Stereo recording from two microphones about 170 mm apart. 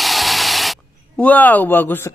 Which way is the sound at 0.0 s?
Centre (ahead or behind).